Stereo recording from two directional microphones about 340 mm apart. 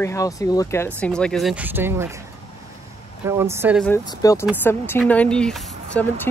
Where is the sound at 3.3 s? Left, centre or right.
Centre.